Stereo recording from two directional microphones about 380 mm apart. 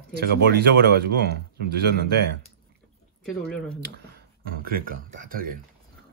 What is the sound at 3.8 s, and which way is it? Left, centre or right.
Speech, right.